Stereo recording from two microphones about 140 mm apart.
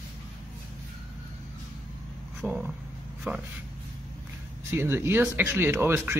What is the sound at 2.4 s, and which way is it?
Speech, 10° right (ahead or behind).